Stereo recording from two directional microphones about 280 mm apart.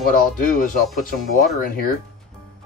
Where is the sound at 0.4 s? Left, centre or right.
Left.